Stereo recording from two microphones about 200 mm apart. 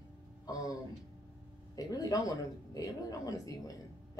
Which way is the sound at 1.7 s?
20° left (ahead or behind).